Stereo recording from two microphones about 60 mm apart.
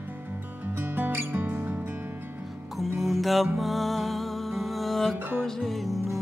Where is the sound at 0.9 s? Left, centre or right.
Right.